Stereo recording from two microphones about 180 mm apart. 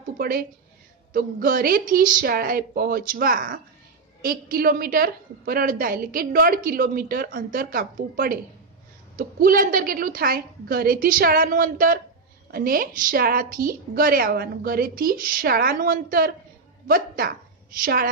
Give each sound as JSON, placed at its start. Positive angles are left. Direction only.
{"t": 0.2, "sound": "a woman's voice", "side_deg": -55}